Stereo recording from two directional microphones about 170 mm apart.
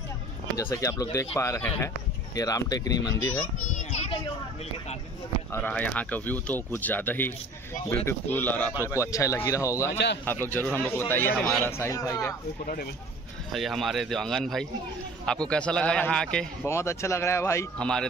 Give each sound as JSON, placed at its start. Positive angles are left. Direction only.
{"t": 0.6, "sound": "speech", "side_deg": 20}
{"t": 3.7, "sound": "children playing", "side_deg": 40}
{"t": 5.5, "sound": "speech", "side_deg": 10}
{"t": 13.5, "sound": "speech", "side_deg": 0}
{"t": 16.6, "sound": "speech", "side_deg": 15}